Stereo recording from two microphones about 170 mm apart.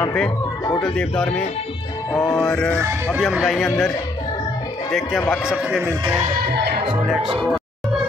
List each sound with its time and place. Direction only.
0.7 s speech: 5° left (ahead or behind)
2.5 s music: 10° left (ahead or behind)
2.8 s speech: 5° right (ahead or behind)
4.9 s speech: centre (ahead or behind)
6.3 s music: 65° right (ahead or behind)